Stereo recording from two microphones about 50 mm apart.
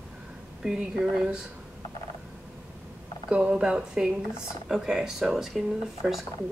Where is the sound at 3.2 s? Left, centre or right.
Right; by 6.2 s centre.